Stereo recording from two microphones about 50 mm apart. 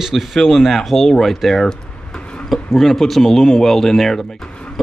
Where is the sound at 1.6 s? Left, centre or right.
Centre.